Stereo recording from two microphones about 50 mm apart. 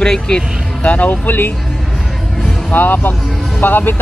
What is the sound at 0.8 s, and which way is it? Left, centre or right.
Speech, left.